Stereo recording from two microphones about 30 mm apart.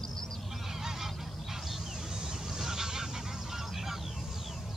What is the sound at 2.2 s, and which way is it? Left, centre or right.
Goose, centre.